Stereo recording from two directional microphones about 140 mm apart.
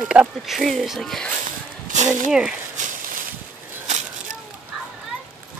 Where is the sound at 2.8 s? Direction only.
65° right (ahead or behind).